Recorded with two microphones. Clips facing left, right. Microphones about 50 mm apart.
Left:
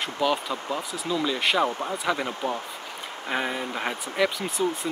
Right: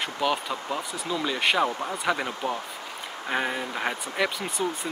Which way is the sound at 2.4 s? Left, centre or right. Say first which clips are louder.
Left 1 dB; right.